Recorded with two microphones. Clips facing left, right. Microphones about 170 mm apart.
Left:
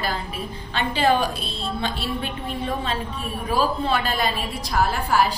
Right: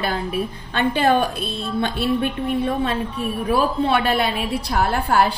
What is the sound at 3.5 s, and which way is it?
A woman's voice, 65° right (ahead or behind).